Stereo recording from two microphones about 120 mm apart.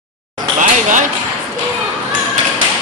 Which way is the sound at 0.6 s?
90° right.